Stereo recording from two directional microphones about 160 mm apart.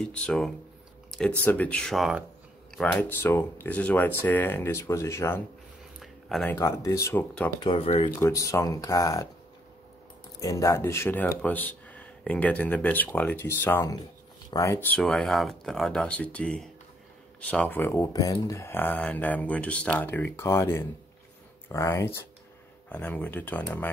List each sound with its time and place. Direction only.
0.0 s speech: 5° left (ahead or behind)
5.9 s a sound: centre (ahead or behind)
6.5 s speech: 20° left (ahead or behind)
7.6 s speech: 35° left (ahead or behind)
8.2 s speech: 20° left (ahead or behind)
10.4 s speech: 20° left (ahead or behind)